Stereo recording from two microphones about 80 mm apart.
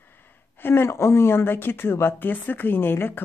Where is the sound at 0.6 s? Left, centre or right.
Left.